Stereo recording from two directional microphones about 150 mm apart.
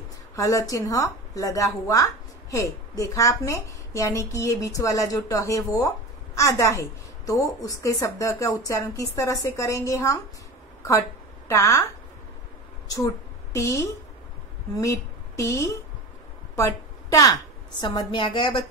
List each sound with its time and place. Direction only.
0.4 s a woman's voice: 20° left (ahead or behind)
11.4 s a woman's voice: 20° left (ahead or behind)
12.8 s a woman's voice: 20° left (ahead or behind)